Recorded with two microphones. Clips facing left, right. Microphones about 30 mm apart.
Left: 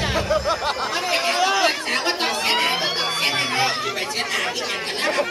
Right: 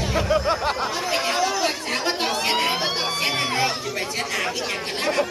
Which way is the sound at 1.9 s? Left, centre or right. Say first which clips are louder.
Left 1 dB; centre.